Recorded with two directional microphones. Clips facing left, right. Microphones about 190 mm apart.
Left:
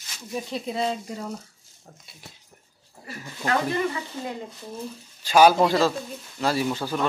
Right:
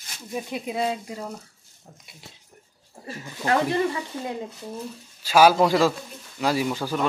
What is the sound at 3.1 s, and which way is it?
Speech, 25° right (ahead or behind).